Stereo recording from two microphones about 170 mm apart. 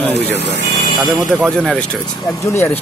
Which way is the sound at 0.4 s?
90° left.